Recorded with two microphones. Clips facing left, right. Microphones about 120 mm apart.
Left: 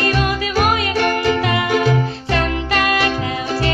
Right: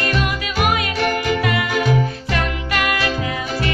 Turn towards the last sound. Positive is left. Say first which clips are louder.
# left 3 dB
turn(degrees=30)  # may be behind; listen again after turning